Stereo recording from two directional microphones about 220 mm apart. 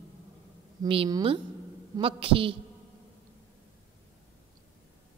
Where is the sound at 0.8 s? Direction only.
20° right (ahead or behind).